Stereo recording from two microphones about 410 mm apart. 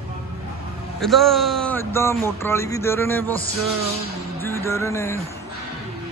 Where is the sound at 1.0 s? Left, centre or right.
Centre.